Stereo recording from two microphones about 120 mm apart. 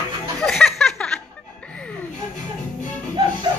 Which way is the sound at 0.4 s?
5° left (ahead or behind).